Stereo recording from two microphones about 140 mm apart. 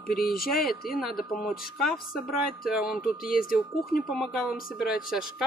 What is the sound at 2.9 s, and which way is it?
Speech, 90° left.